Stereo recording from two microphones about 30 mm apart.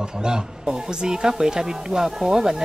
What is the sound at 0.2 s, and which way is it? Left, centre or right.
Speech, right.